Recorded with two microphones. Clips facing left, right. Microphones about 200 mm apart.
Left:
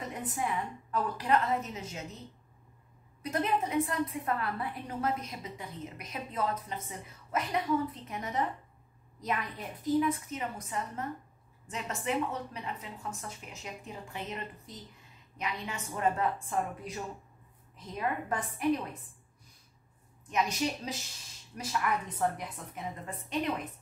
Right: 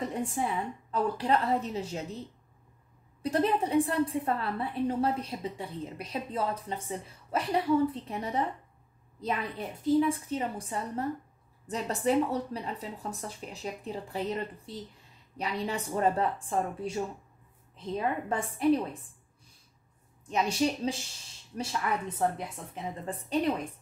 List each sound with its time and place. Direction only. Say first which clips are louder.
0.1 s a woman's voice: right 3 dB; 30° right (ahead or behind)
3.2 s a woman's voice: right 4 dB; 30° right (ahead or behind)
20.2 s a woman's voice: right 3 dB; 30° right (ahead or behind)
23.0 s a woman's voice: right 5 dB; 30° right (ahead or behind)